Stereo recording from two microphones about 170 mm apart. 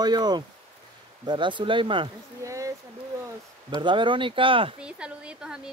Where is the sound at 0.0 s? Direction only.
25° right (ahead or behind).